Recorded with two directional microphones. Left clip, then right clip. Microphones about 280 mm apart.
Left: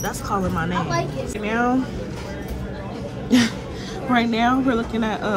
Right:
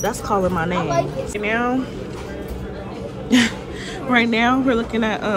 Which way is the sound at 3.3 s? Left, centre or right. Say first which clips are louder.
Right 2 dB; centre.